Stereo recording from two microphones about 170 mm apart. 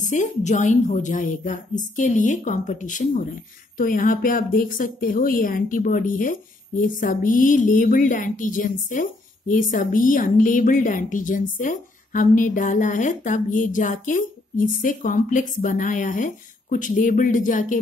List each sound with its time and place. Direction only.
0.0 s speech: 45° left (ahead or behind)